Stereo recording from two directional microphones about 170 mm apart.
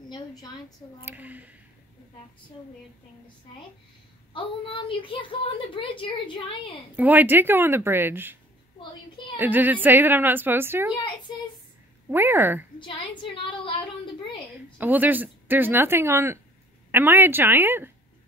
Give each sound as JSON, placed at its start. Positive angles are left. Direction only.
{"t": 0.1, "sound": "a sound", "side_deg": 20}
{"t": 1.0, "sound": "a woman's voice", "side_deg": -10}
{"t": 4.3, "sound": "a woman's voice", "side_deg": 30}
{"t": 7.0, "sound": "a woman's voice", "side_deg": -10}
{"t": 9.4, "sound": "a woman's voice", "side_deg": -10}
{"t": 12.1, "sound": "a woman's voice", "side_deg": -15}
{"t": 13.2, "sound": "speech", "side_deg": 30}
{"t": 14.8, "sound": "a woman's voice", "side_deg": -10}